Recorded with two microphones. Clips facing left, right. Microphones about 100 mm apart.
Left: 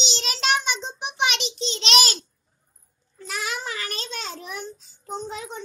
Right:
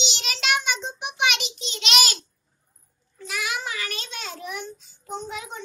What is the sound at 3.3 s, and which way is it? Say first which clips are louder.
Child singing: even; 40° left (ahead or behind).